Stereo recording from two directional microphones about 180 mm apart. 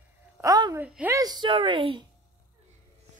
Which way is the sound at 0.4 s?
20° right (ahead or behind).